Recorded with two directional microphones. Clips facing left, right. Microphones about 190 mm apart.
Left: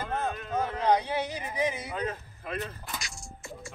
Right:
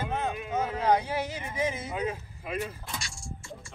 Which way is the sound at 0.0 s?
5° right (ahead or behind).